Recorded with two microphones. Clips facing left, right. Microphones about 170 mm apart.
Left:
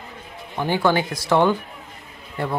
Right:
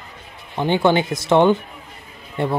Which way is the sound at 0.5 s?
20° right (ahead or behind).